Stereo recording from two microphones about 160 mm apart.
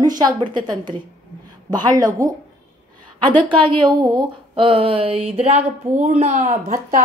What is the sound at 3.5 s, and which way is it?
A woman's voice, 30° right (ahead or behind).